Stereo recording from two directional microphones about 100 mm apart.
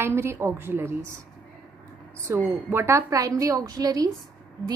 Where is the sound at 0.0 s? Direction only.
25° right (ahead or behind).